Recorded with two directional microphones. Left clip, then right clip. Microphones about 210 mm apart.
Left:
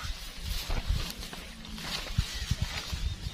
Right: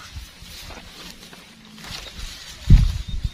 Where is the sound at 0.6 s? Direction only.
10° left (ahead or behind).